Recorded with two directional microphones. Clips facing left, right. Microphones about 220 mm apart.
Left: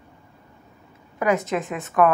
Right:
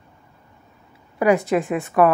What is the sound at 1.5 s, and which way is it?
Speech, 15° right (ahead or behind).